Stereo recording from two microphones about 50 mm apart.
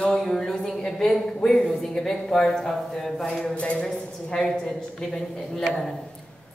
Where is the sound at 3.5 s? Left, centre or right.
Left.